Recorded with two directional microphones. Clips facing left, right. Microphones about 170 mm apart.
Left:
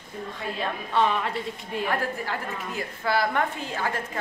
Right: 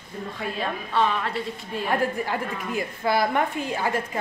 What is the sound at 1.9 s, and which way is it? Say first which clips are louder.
A woman's voice: right 6 dB; 15° right (ahead or behind).